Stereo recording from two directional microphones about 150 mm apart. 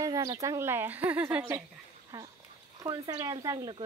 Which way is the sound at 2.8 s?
25° right (ahead or behind).